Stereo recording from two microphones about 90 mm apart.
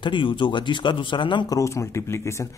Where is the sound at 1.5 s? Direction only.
35° left (ahead or behind).